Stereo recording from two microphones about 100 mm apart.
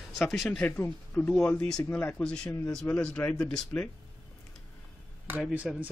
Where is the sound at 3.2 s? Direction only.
15° left (ahead or behind).